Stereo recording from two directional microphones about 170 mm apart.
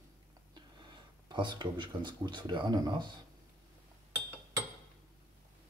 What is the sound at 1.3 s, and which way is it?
Speech, 25° right (ahead or behind).